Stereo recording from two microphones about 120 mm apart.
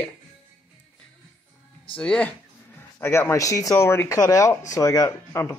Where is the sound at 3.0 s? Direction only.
20° left (ahead or behind).